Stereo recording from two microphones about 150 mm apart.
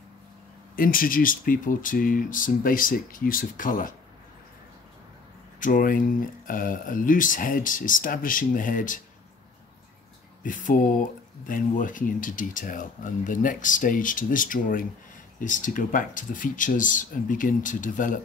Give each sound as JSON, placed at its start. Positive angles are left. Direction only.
{"t": 0.7, "sound": "speech", "side_deg": 70}
{"t": 5.6, "sound": "speech", "side_deg": 65}
{"t": 10.4, "sound": "speech", "side_deg": 60}